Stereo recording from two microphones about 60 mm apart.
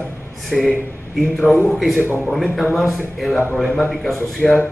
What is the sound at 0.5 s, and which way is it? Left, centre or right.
A man's voice, centre.